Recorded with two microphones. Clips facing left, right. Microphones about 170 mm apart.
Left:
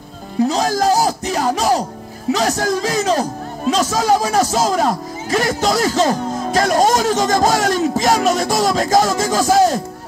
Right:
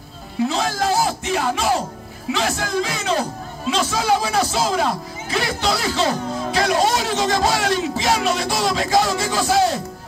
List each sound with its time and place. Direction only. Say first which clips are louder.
0.4 s speech: left 5 dB; 40° left (ahead or behind)